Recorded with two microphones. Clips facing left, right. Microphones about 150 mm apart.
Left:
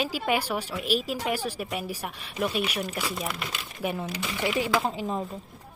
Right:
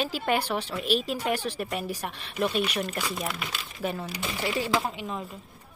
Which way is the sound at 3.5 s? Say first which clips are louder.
Left 1 dB; 10° left (ahead or behind).